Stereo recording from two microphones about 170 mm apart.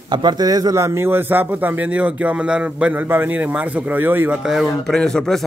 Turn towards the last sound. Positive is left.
turn(degrees=5)  # may be behind; listen again after turning